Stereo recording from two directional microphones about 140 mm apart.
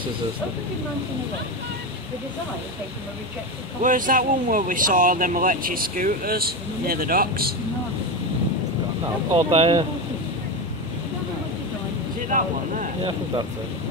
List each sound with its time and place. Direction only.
3.8 s speech: 75° right (ahead or behind); by 7.5 s 90° right
9.5 s speech: 45° right (ahead or behind)
12.3 s a sound: 65° right (ahead or behind)